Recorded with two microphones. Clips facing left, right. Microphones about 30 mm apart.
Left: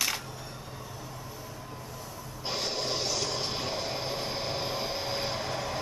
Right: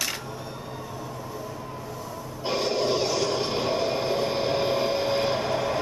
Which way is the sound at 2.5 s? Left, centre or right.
Right.